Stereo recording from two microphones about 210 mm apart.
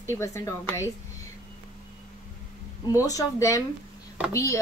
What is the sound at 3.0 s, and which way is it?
Speech, 15° left (ahead or behind).